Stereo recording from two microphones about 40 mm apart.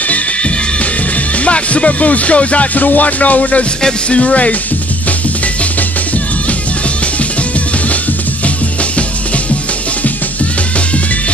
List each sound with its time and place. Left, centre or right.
1.4 s music: left